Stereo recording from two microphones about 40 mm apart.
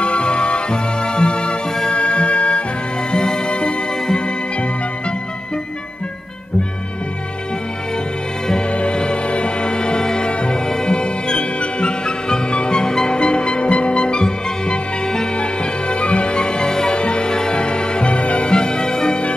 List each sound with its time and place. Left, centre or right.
0.0 s music: left
8.7 s music: left
18.5 s music: left